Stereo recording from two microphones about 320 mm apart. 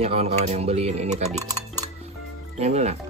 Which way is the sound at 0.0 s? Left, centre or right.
Centre.